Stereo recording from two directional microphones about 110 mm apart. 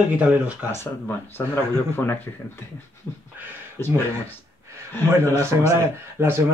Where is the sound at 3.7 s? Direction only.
20° left (ahead or behind).